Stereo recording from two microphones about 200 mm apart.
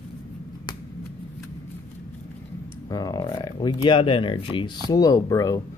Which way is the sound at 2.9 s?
20° left (ahead or behind).